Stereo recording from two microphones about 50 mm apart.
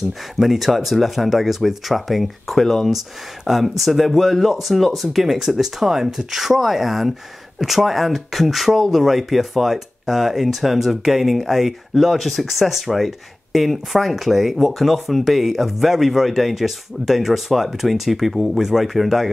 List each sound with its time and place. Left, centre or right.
0.4 s speech: centre